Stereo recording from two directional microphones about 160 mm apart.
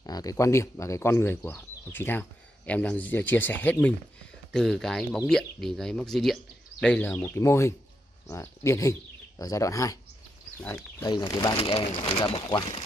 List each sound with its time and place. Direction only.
0.0 s speech: 20° left (ahead or behind)